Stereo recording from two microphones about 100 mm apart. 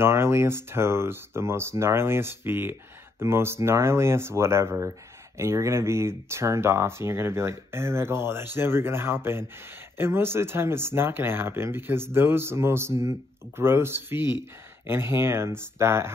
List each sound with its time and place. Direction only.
0.0 s speech: 25° right (ahead or behind)